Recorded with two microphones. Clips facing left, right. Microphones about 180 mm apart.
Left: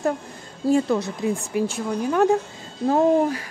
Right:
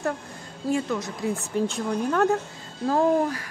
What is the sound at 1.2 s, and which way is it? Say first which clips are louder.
Speech: left 2 dB; 10° left (ahead or behind).